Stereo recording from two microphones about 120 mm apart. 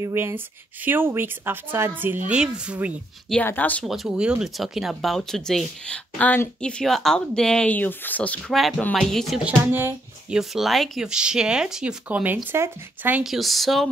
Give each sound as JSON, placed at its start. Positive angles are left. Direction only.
{"t": 0.0, "sound": "a woman's voice", "side_deg": -20}
{"t": 3.4, "sound": "speech", "side_deg": 15}
{"t": 3.8, "sound": "speech", "side_deg": 0}
{"t": 8.5, "sound": "speech", "side_deg": 0}
{"t": 9.4, "sound": "a woman's voice", "side_deg": -15}
{"t": 10.3, "sound": "a woman's voice", "side_deg": 0}
{"t": 13.2, "sound": "speech", "side_deg": 0}